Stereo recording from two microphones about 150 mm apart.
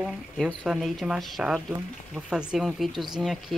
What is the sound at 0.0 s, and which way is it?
Speech, centre (ahead or behind).